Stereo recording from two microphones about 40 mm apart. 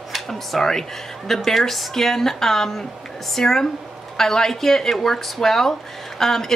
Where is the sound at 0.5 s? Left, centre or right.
Centre.